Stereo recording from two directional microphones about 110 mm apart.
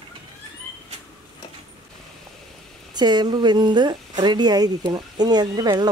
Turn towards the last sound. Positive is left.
turn(degrees=-40)  # may be behind; listen again after turning